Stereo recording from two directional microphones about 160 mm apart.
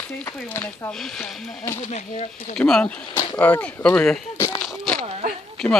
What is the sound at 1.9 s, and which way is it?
Speech, 45° left (ahead or behind).